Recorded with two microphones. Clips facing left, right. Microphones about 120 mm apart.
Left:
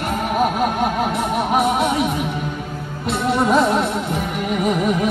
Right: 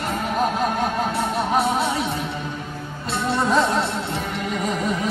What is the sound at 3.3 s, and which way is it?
Music, 10° left (ahead or behind).